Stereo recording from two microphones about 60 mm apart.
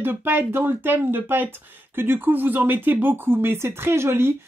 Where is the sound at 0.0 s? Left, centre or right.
Right.